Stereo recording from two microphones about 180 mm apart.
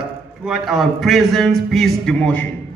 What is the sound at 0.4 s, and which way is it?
A man's voice, centre (ahead or behind).